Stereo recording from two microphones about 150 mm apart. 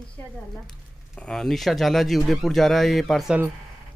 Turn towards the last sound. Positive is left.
turn(degrees=0)  # may be behind; listen again after turning